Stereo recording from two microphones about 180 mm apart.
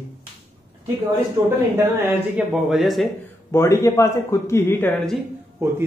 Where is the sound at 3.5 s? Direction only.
15° left (ahead or behind).